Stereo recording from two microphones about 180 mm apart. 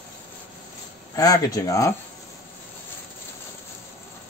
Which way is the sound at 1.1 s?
20° left (ahead or behind).